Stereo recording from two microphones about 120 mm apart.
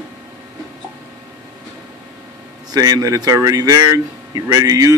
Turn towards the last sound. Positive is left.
turn(degrees=-30)  # may be behind; listen again after turning